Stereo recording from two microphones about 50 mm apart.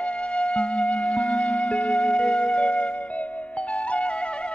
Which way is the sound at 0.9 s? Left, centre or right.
Centre.